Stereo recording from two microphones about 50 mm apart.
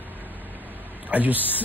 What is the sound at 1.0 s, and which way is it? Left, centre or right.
Speech, right.